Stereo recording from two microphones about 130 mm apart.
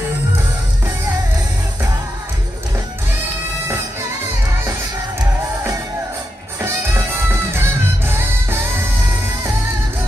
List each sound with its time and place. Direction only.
7.5 s music: 20° right (ahead or behind)